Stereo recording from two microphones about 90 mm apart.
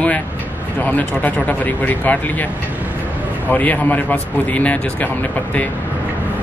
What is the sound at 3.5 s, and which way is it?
Speech, 20° left (ahead or behind).